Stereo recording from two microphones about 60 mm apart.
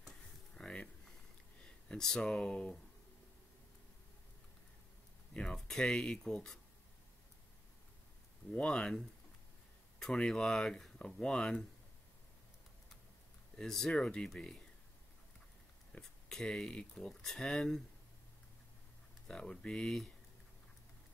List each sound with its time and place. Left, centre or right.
0.6 s a sound: centre
1.9 s speech: centre
5.3 s speech: centre
8.5 s speech: centre
13.6 s speech: centre
16.0 s speech: centre
19.2 s speech: centre